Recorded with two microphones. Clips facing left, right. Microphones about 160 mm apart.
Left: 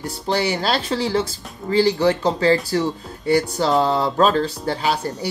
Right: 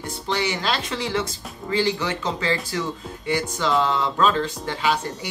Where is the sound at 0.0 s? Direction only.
35° left (ahead or behind).